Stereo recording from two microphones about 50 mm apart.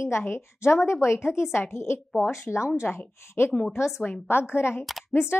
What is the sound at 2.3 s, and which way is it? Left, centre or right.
Speech, left.